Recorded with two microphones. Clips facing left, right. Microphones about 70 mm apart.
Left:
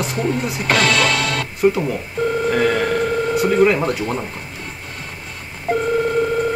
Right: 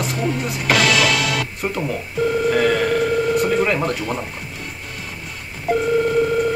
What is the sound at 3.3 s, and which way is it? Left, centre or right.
Speech, centre.